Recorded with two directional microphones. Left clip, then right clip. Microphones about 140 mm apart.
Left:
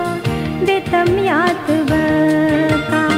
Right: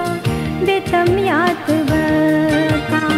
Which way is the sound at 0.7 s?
45° left (ahead or behind).